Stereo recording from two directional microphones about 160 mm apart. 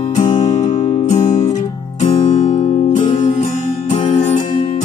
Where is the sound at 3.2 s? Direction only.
45° left (ahead or behind).